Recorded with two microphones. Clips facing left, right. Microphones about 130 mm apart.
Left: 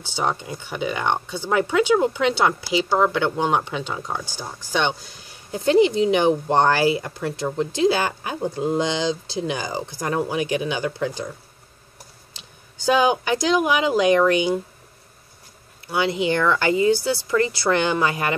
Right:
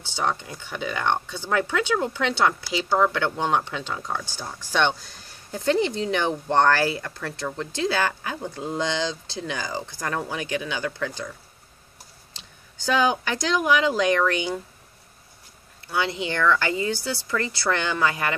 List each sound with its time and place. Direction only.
0.0 s speech: 10° left (ahead or behind)
12.8 s speech: 15° left (ahead or behind)
15.9 s speech: 15° left (ahead or behind)